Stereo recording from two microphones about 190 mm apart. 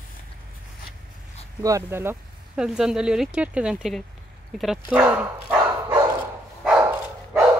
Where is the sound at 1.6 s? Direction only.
15° right (ahead or behind).